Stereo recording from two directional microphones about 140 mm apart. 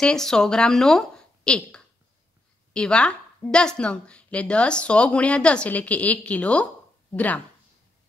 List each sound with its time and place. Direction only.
0.0 s speech: 5° left (ahead or behind)